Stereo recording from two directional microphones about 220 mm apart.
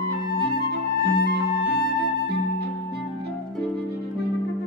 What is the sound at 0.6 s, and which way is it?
Music, 40° left (ahead or behind).